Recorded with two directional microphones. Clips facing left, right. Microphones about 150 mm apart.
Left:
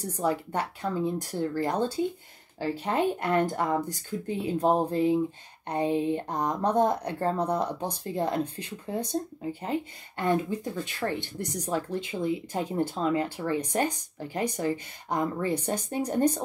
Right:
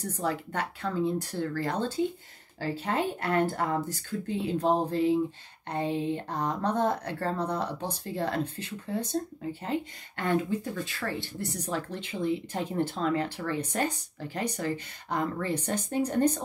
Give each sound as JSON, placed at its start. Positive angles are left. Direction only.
{"t": 0.0, "sound": "speech", "side_deg": 10}